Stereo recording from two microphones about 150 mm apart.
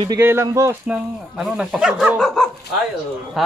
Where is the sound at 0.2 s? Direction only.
15° right (ahead or behind).